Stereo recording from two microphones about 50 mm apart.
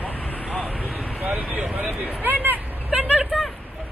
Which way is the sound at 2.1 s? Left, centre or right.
Right.